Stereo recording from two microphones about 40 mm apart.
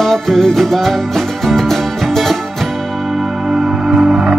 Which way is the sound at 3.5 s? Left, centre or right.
Right.